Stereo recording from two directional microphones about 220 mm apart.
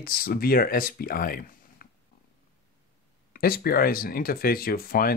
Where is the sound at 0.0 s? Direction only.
40° left (ahead or behind).